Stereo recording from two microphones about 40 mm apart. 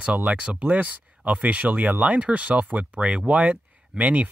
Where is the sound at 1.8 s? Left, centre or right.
Right.